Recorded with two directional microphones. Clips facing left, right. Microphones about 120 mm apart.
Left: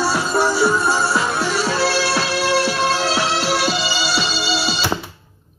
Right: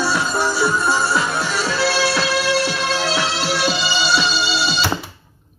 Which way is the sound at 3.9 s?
10° left (ahead or behind).